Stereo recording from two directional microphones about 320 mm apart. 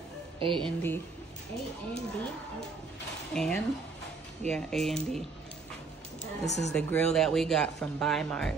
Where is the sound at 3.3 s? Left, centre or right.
Centre.